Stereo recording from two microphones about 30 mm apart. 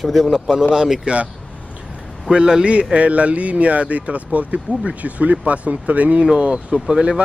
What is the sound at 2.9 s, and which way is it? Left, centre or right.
Speech, right.